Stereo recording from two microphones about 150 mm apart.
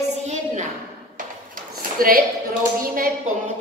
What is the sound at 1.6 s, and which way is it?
Speech, 70° right (ahead or behind).